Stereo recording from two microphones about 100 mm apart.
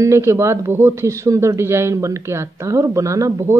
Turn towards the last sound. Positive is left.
turn(degrees=-35)  # may be behind; listen again after turning